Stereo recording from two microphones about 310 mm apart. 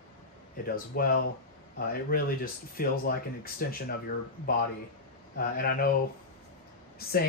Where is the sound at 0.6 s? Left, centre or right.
Left.